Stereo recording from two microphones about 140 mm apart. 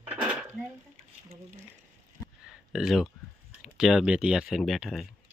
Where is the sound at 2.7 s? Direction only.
Centre (ahead or behind).